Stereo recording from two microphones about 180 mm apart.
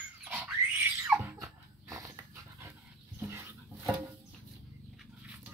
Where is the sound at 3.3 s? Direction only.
10° right (ahead or behind).